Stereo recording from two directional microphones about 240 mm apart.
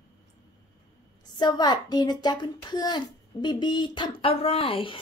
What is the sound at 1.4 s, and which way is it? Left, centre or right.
A child's voice, centre.